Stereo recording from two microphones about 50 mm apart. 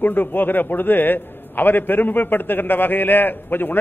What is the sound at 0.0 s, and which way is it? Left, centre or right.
A man's voice, left.